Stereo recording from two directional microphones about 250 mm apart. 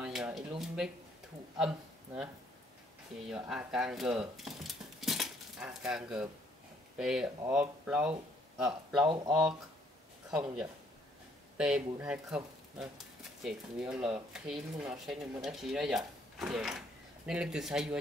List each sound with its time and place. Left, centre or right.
0.0 s a sound: centre
3.3 s speech: centre
9.0 s speech: centre
10.3 s speech: centre